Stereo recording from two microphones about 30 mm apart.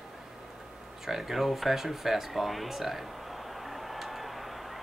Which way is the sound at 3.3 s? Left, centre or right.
Centre.